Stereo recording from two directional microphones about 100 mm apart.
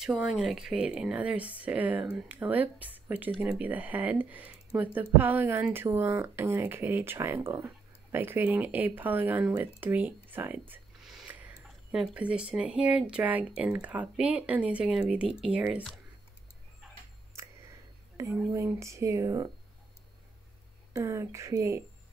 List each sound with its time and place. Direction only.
0.0 s speech: centre (ahead or behind)
18.1 s a sound: 30° right (ahead or behind)
18.5 s speech: 30° right (ahead or behind)
20.9 s speech: 30° right (ahead or behind)